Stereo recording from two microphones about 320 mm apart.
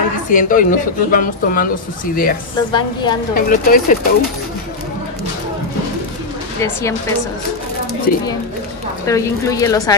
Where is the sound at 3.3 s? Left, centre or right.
Left.